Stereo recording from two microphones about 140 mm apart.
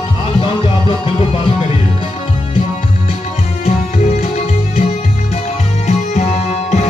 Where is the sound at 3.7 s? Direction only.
50° left (ahead or behind).